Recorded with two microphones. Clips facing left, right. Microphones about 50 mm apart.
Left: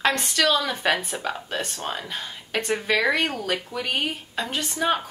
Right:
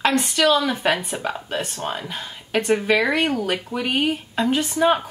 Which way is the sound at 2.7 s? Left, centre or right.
Centre.